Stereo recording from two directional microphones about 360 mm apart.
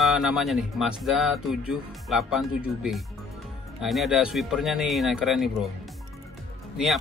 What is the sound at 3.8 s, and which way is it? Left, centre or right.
Speech, centre.